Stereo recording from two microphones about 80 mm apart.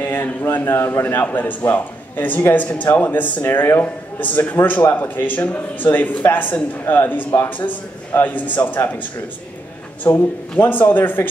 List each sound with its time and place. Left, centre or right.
0.0 s speech: left
10.1 s speech: left